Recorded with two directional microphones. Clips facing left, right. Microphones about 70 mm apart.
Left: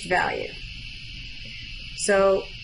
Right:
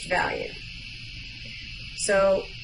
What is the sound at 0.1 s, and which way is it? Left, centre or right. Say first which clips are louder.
Speech: left 2 dB; centre.